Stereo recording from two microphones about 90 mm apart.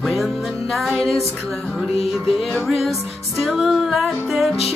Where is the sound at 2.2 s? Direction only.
Centre (ahead or behind).